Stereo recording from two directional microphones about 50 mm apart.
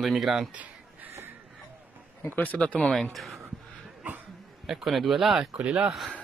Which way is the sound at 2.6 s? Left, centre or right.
Centre.